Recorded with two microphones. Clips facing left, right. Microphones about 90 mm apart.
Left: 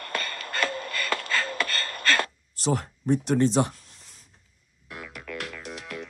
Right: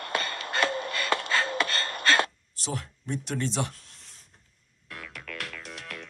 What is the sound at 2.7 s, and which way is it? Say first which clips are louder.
Speech: left 9 dB; 45° left (ahead or behind).